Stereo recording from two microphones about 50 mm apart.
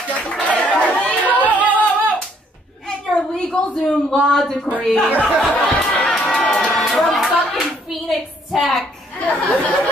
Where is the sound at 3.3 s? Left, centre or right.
Centre.